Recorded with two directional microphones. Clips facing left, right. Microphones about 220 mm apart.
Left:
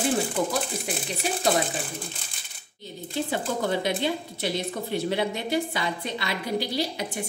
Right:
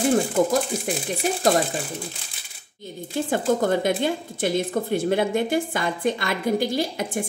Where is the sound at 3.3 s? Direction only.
50° right (ahead or behind).